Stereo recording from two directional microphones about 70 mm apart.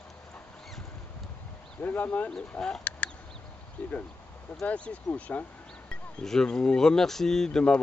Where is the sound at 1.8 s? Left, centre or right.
Left.